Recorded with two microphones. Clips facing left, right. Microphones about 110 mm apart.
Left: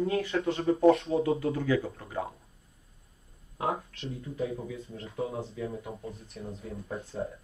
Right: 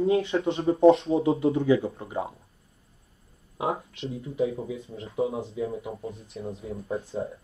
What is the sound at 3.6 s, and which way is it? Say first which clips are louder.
Speech: right 3 dB; 20° right (ahead or behind).